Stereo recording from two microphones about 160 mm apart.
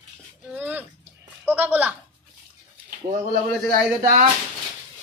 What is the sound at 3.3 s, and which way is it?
Speech, 55° right (ahead or behind).